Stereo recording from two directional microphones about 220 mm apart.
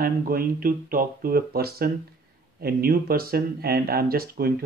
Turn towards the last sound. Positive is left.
turn(degrees=-45)  # may be behind; listen again after turning